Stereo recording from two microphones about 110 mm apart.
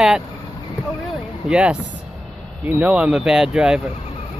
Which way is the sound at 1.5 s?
10° right (ahead or behind).